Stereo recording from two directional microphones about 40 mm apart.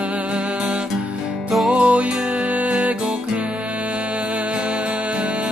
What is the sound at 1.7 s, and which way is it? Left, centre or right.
Music, right.